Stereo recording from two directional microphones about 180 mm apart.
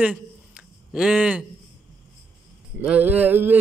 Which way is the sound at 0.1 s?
5° right (ahead or behind).